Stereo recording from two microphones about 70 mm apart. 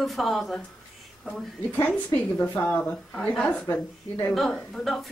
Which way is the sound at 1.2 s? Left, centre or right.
Left.